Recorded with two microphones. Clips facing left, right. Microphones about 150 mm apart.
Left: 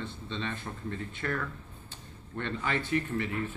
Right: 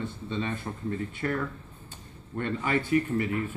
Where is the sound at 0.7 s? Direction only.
25° right (ahead or behind).